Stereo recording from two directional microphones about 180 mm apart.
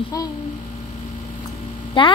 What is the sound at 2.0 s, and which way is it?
Speech, 25° left (ahead or behind).